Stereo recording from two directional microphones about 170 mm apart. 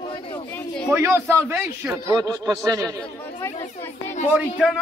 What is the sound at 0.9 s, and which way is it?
A man's voice, 15° right (ahead or behind).